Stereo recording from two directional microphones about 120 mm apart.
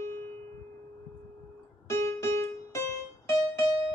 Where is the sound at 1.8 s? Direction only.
20° left (ahead or behind).